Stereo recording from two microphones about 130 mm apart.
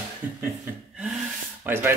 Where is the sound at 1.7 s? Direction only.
15° right (ahead or behind).